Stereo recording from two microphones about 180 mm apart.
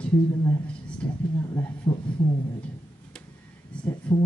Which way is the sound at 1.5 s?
15° left (ahead or behind).